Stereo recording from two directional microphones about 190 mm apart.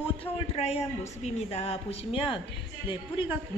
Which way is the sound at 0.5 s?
35° left (ahead or behind).